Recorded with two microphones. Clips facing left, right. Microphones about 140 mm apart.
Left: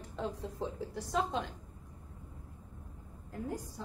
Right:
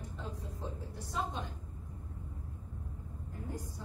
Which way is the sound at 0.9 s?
90° left.